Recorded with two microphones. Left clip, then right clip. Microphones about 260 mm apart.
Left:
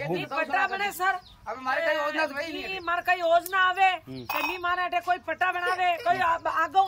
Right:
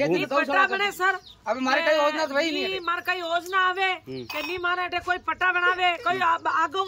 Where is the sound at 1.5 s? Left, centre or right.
Right.